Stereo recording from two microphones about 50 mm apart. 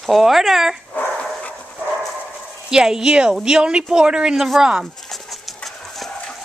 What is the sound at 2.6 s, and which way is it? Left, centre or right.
Speech, centre.